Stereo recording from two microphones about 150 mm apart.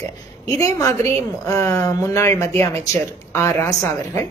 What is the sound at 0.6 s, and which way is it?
A woman's voice, 20° left (ahead or behind).